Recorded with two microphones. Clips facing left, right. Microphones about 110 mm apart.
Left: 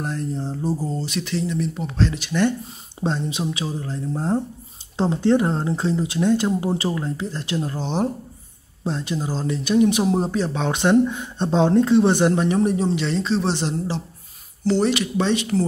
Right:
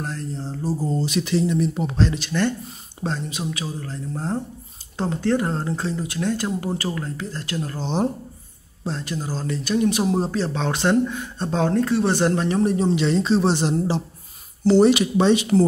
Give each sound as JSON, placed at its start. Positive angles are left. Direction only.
{"t": 0.0, "sound": "speech", "side_deg": 15}
{"t": 0.7, "sound": "speech", "side_deg": 0}
{"t": 2.1, "sound": "speech", "side_deg": 10}
{"t": 3.0, "sound": "speech", "side_deg": 20}